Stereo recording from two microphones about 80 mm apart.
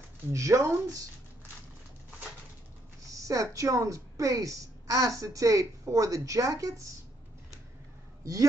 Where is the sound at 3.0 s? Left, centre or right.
Right.